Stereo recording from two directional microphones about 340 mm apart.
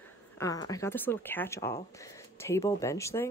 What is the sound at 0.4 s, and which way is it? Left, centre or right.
A woman's voice, centre.